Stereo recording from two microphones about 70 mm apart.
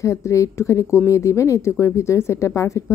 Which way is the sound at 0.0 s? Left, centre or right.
Left.